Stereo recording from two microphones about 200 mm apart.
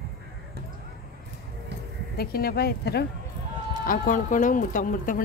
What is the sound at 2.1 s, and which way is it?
Speech, 50° left (ahead or behind).